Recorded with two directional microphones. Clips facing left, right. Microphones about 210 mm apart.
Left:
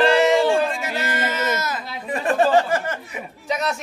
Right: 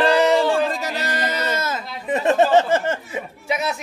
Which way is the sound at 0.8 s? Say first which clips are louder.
Even; 35° right (ahead or behind).